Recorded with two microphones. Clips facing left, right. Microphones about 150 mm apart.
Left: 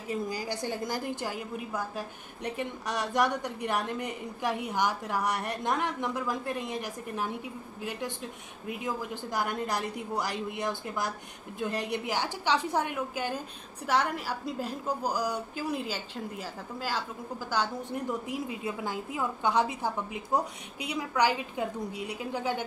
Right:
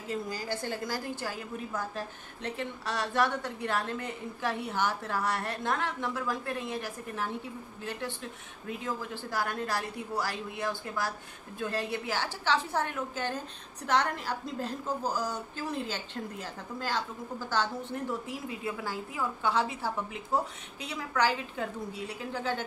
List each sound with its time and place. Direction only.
0.1 s a woman's voice: 15° left (ahead or behind)
18.2 s a woman's voice: 20° left (ahead or behind)